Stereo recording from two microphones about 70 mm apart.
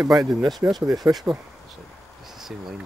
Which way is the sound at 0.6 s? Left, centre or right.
Right.